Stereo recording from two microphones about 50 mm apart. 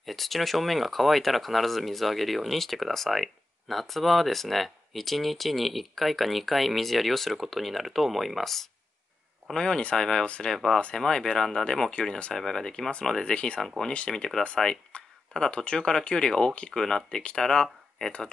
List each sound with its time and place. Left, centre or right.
0.0 s speech: centre
9.5 s speech: centre
10.5 s speech: centre
13.2 s speech: left
14.9 s a sound: left
15.4 s speech: left